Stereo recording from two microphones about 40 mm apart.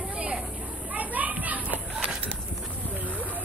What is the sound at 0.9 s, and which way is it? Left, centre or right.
Children playing, right.